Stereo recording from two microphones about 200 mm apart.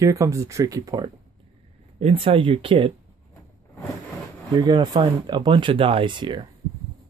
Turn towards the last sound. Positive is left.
turn(degrees=-25)  # may be behind; listen again after turning